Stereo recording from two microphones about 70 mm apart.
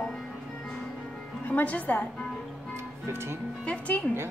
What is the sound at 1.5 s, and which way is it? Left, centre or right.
Speech, left.